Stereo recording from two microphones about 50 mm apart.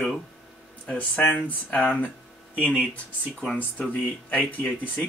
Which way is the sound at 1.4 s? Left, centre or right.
Left.